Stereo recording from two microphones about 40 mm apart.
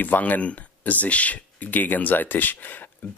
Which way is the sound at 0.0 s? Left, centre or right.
Left.